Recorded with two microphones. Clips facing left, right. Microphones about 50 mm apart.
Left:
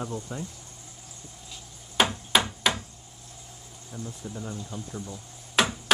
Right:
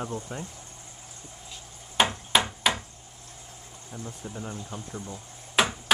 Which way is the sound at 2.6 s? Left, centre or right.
Centre.